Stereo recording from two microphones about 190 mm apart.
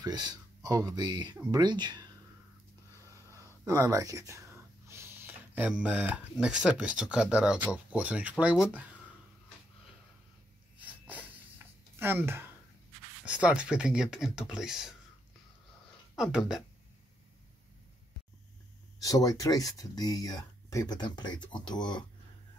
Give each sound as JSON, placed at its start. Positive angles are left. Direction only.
{"t": 0.0, "sound": "speech", "side_deg": -20}
{"t": 3.6, "sound": "speech", "side_deg": -15}
{"t": 10.8, "sound": "a sound", "side_deg": -10}
{"t": 13.2, "sound": "speech", "side_deg": -5}
{"t": 16.2, "sound": "speech", "side_deg": -5}
{"t": 18.9, "sound": "speech", "side_deg": 20}